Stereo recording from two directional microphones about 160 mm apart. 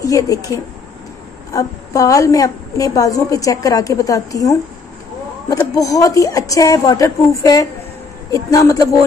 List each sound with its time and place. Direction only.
0.0 s a woman's voice: 20° left (ahead or behind)